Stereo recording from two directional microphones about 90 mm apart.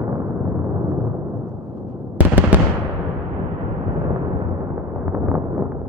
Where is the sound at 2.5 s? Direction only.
20° right (ahead or behind).